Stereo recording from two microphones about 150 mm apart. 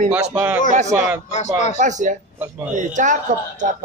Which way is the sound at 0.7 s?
50° right (ahead or behind).